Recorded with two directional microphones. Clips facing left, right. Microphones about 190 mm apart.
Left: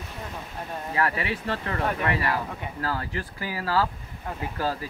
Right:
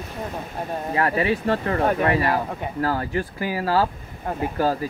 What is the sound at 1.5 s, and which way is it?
Speech, 40° right (ahead or behind).